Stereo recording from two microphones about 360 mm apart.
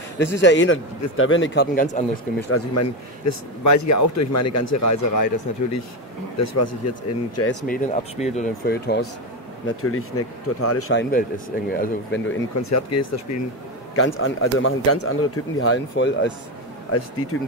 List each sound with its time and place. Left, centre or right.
0.4 s a man's voice: left
2.5 s speech: left
7.6 s a man's voice: left
12.6 s speech: left
13.9 s speech: left